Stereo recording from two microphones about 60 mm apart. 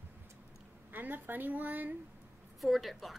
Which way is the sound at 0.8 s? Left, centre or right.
Right.